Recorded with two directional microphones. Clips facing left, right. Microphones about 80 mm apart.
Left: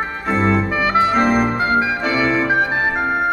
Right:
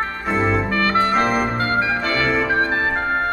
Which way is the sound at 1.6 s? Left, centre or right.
Centre.